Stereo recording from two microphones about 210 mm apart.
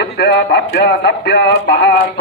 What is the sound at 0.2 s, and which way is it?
Speech, 55° left (ahead or behind).